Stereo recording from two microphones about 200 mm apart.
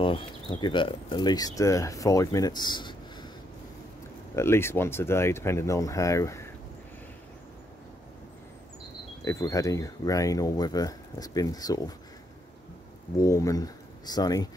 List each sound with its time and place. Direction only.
0.0 s speech: 25° left (ahead or behind)
4.4 s speech: 10° left (ahead or behind)
9.2 s speech: 15° left (ahead or behind)
13.2 s speech: 15° left (ahead or behind)